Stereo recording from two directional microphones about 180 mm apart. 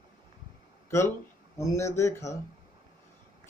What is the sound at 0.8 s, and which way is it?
Speech, 15° left (ahead or behind).